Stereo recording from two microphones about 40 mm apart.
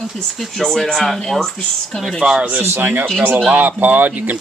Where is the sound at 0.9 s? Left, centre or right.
Centre.